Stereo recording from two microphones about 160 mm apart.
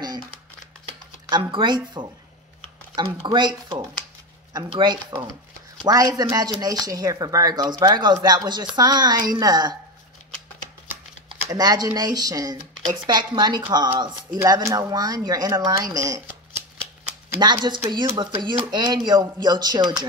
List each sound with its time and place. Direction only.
1.3 s speech: 30° right (ahead or behind)
3.3 s speech: 30° right (ahead or behind)
11.5 s speech: 25° right (ahead or behind)
17.4 s speech: 25° right (ahead or behind)